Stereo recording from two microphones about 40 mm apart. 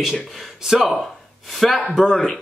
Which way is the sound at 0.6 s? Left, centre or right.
Centre.